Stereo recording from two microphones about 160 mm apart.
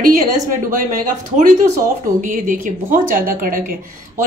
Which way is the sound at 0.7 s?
60° right (ahead or behind).